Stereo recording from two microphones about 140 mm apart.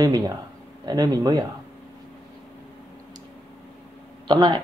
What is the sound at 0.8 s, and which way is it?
Speech, 30° right (ahead or behind).